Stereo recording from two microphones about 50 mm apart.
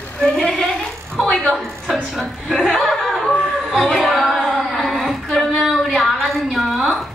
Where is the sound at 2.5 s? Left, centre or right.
Centre.